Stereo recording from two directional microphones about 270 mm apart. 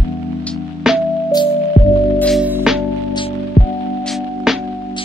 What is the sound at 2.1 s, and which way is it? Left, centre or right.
Music, centre.